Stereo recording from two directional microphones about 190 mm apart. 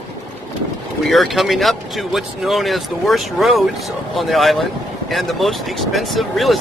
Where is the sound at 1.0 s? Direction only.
Centre (ahead or behind).